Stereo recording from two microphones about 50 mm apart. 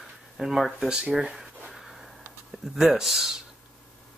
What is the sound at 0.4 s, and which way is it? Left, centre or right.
Speech, centre.